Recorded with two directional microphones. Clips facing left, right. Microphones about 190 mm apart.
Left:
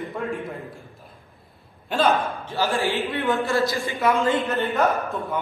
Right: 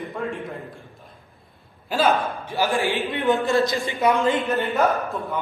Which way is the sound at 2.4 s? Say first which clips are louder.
Right 1 dB; 15° right (ahead or behind).